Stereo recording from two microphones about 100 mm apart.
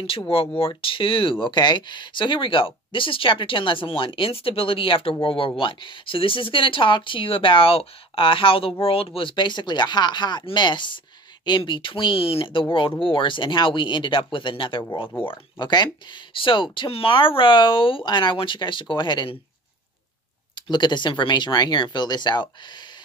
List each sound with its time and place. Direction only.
0.6 s speech: 65° left (ahead or behind)
1.4 s speech: 50° left (ahead or behind)
20.7 s speech: 50° left (ahead or behind)